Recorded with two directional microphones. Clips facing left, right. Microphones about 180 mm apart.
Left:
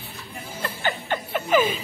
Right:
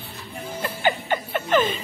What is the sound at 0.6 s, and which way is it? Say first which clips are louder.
Music: right 4 dB; 5° right (ahead or behind).